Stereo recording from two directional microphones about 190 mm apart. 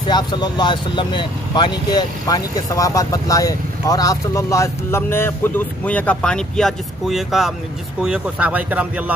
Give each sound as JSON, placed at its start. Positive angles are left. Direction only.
{"t": 0.1, "sound": "speech", "side_deg": 20}